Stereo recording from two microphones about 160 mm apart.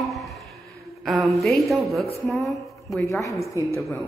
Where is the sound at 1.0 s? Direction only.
Centre (ahead or behind).